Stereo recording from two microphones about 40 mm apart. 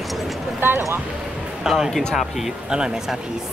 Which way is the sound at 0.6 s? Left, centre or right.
Right.